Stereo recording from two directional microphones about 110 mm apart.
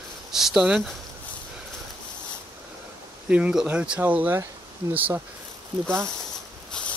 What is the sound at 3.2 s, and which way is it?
Speech, 10° right (ahead or behind).